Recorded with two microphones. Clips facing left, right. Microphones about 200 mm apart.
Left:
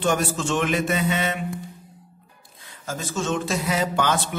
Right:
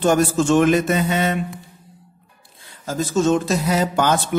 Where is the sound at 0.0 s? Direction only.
45° right (ahead or behind).